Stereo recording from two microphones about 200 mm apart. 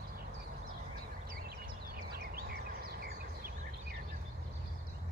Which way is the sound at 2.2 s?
50° right (ahead or behind).